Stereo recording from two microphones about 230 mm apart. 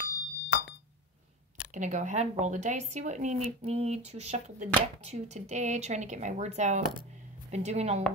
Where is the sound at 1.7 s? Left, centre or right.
Right.